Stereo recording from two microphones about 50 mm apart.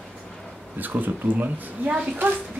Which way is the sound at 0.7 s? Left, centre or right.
Right.